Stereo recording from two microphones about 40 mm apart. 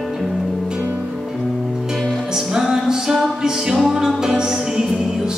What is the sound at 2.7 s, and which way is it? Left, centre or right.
Music, centre.